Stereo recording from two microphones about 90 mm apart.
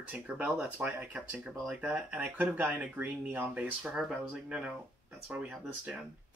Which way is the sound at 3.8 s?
5° right (ahead or behind).